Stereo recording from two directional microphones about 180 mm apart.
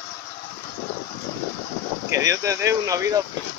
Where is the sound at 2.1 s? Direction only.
20° right (ahead or behind).